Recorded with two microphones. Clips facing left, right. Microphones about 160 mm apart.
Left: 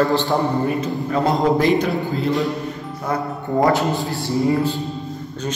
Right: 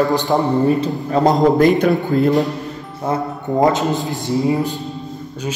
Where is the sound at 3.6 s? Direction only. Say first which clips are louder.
Right 2 dB; 20° right (ahead or behind).